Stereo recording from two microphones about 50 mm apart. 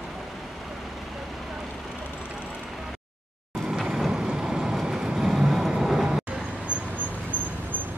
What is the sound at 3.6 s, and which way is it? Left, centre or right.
Mechanisms, centre.